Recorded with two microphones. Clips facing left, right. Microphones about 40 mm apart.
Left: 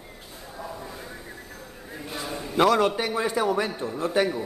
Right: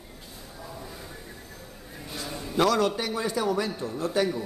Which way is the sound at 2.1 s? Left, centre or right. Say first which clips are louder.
Left 2 dB; centre.